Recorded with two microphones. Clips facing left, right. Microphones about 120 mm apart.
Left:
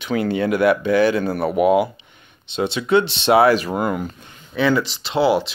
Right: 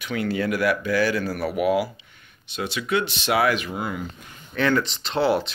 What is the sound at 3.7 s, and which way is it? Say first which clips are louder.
Speech: left 8 dB; 50° left (ahead or behind).